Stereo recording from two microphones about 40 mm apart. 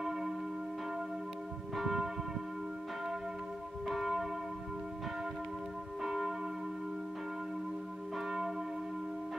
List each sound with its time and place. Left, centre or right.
0.0 s church bell: centre
1.8 s church bell: centre
3.8 s church bell: centre
6.0 s church bell: centre